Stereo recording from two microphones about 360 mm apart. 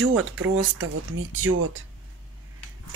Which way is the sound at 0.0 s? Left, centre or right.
Right.